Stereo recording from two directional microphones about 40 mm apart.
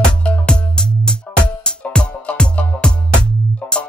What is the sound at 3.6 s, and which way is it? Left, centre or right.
Music, left.